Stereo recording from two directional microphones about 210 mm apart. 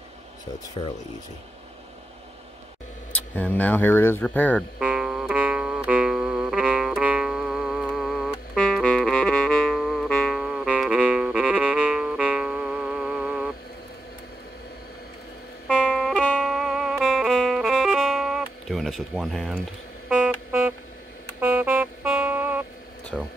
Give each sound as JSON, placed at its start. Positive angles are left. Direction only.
{"t": 0.8, "sound": "speech", "side_deg": 25}
{"t": 3.1, "sound": "speech", "side_deg": 5}
{"t": 4.7, "sound": "music", "side_deg": -5}
{"t": 15.8, "sound": "music", "side_deg": 0}
{"t": 23.1, "sound": "a sound", "side_deg": 0}